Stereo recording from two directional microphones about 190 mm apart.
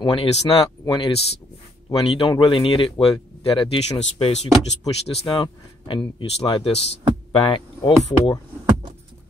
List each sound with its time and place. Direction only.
0.0 s speech: 30° left (ahead or behind)